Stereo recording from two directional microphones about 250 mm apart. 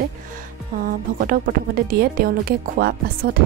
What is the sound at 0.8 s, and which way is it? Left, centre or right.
Speech, right.